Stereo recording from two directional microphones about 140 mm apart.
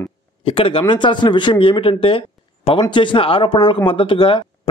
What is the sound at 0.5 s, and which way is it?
Speech, 40° left (ahead or behind).